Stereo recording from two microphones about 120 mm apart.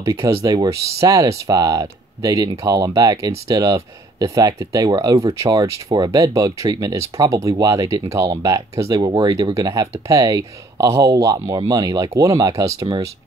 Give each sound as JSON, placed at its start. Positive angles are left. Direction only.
{"t": 0.0, "sound": "speech", "side_deg": -25}